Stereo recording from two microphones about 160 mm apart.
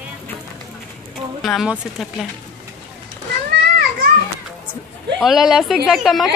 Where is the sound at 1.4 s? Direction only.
Centre (ahead or behind).